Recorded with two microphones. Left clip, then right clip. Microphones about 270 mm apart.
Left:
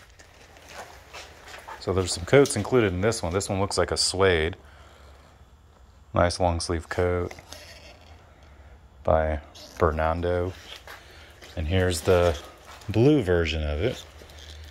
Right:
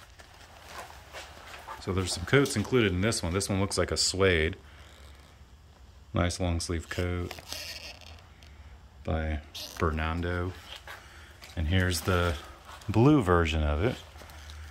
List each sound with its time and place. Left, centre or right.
2.2 s speech: centre
6.1 s speech: centre
7.2 s a sound: right
9.0 s speech: centre
11.5 s speech: centre